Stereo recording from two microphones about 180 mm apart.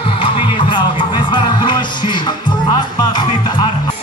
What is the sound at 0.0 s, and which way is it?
Music, 30° left (ahead or behind).